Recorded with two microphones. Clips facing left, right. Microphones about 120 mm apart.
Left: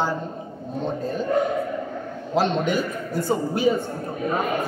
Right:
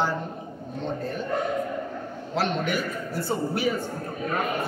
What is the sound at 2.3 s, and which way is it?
A man's voice, 20° left (ahead or behind).